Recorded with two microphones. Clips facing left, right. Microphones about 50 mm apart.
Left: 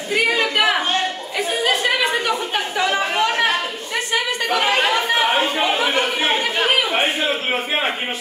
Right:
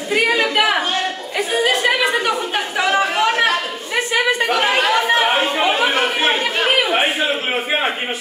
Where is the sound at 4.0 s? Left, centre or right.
Right.